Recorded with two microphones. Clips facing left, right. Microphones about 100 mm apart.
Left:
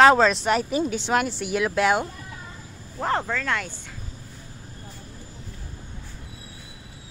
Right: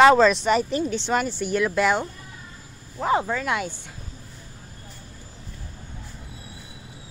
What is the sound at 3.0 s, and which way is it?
Speech, 10° right (ahead or behind).